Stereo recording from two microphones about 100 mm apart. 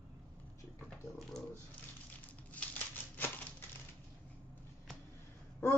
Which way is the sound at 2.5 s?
15° left (ahead or behind).